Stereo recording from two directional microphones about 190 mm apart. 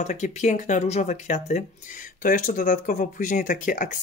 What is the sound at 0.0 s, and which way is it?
Speech, 40° left (ahead or behind).